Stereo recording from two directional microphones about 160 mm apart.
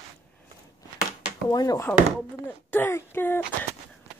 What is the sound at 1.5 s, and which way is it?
Speech, 20° left (ahead or behind).